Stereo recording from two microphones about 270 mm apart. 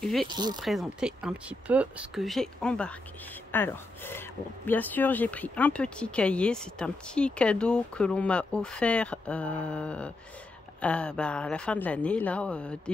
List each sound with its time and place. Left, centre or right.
0.0 s speech: centre
0.3 s speech: centre
0.6 s speech: centre